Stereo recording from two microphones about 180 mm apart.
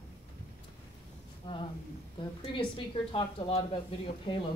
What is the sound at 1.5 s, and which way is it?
Speech, 25° left (ahead or behind).